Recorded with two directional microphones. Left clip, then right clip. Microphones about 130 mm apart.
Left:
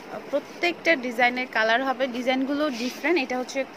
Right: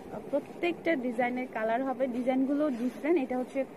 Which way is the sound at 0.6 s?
10° left (ahead or behind).